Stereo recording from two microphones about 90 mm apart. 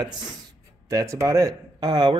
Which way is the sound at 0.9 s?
40° right (ahead or behind).